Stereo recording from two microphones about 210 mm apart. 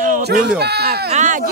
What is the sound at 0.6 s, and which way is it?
Speech, 50° right (ahead or behind).